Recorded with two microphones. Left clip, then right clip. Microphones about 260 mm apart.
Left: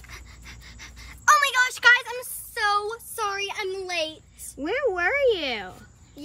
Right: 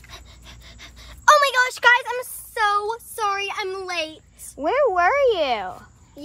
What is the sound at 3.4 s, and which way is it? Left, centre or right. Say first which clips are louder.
A woman's voice: right 3 dB; centre.